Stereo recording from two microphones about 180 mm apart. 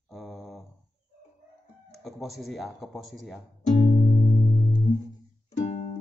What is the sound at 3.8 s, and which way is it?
Music, 50° left (ahead or behind).